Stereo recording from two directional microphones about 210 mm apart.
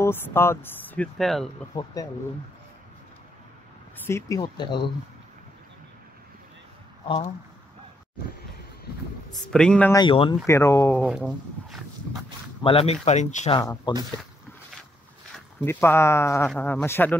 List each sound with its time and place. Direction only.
0.0 s speech: 10° left (ahead or behind)
1.7 s speech: 20° left (ahead or behind)
4.0 s speech: 15° left (ahead or behind)
9.5 s a man's voice: 5° left (ahead or behind)
9.9 s speech: 25° left (ahead or behind)
11.1 s speech: centre (ahead or behind)
12.6 s speech: 30° left (ahead or behind)
13.6 s speech: 20° left (ahead or behind)
15.3 s speech: 10° left (ahead or behind)